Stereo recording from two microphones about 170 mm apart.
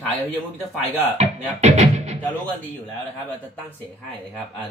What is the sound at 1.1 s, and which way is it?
Music, 40° right (ahead or behind).